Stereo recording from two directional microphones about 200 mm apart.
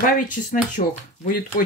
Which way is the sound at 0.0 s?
40° left (ahead or behind).